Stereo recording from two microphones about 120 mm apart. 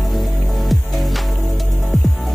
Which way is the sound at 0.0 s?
Centre (ahead or behind).